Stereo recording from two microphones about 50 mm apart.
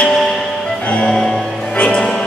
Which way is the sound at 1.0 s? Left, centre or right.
Centre.